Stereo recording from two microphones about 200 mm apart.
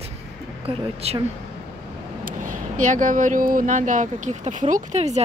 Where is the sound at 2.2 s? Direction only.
40° right (ahead or behind).